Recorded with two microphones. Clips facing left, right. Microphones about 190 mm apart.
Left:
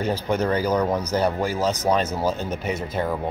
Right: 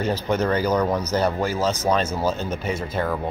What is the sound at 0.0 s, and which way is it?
Speech, 10° left (ahead or behind).